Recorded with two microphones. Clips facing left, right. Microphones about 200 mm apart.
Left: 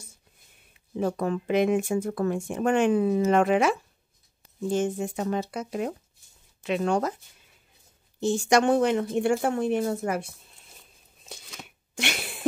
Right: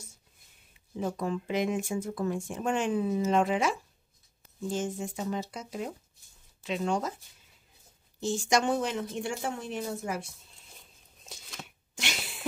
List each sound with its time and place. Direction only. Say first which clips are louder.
0.9 s speech: left 5 dB; 60° left (ahead or behind)
8.2 s speech: left 6 dB; 60° left (ahead or behind)
11.9 s a sound: left 7 dB; 60° left (ahead or behind)